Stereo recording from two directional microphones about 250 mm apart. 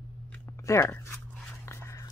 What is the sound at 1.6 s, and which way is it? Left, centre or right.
Whispering, centre.